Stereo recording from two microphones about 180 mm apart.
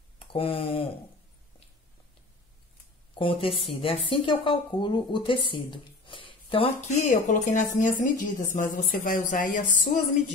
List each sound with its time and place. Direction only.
0.2 s speech: 30° left (ahead or behind)
3.2 s speech: 30° left (ahead or behind)
7.0 s speech: 45° left (ahead or behind)